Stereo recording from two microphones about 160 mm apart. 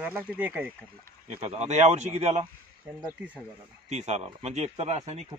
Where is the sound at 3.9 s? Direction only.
45° right (ahead or behind).